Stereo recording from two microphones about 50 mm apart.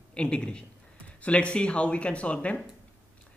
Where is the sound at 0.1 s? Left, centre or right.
Centre.